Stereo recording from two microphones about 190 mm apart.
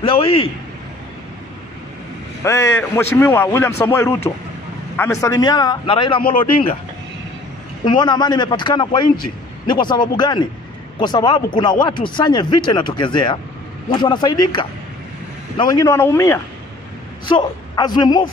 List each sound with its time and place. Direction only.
0.0 s a man's voice: 30° left (ahead or behind)
2.4 s a man's voice: 15° left (ahead or behind)
7.8 s a man's voice: 25° left (ahead or behind)